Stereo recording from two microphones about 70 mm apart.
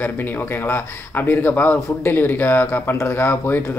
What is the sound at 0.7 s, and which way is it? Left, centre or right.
Speech, left.